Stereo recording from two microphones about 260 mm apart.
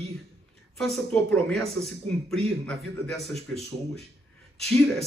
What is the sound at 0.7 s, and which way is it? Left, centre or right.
A man's voice, centre.